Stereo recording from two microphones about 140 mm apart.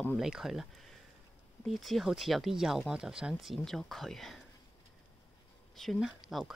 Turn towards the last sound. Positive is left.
turn(degrees=0)  # may be behind; listen again after turning